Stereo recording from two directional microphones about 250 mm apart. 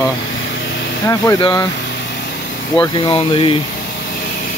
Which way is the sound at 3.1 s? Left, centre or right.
Left.